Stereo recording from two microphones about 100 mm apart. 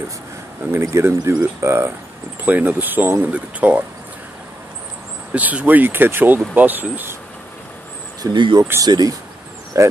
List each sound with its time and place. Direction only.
0.7 s speech: 25° right (ahead or behind)
2.4 s speech: 15° right (ahead or behind)
5.3 s speech: 15° right (ahead or behind)
8.2 s speech: 50° right (ahead or behind); by 9.9 s 35° right (ahead or behind)